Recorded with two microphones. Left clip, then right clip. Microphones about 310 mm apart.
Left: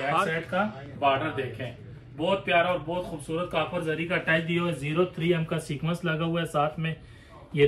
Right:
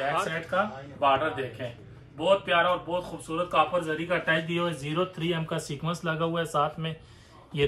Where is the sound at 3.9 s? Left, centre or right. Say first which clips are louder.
Left 1 dB; centre.